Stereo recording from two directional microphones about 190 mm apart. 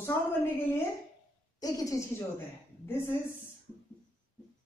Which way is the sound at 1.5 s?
20° left (ahead or behind).